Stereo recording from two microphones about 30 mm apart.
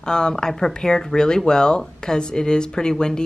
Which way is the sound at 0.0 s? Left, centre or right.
Left.